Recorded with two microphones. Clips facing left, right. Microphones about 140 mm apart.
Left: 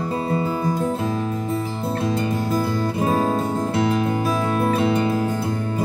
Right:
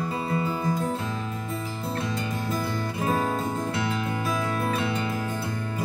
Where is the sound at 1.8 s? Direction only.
30° left (ahead or behind).